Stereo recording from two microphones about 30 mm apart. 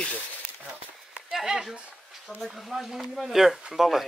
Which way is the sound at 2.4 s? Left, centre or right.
Centre.